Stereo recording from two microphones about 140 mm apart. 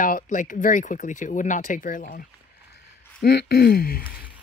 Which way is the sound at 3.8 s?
90° left.